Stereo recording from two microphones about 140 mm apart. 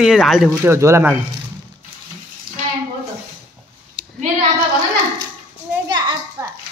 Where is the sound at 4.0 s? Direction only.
5° right (ahead or behind).